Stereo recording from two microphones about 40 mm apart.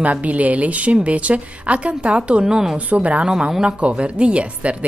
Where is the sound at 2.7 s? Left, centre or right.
Right.